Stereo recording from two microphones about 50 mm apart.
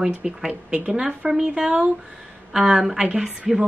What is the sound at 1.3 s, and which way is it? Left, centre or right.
Speech, centre.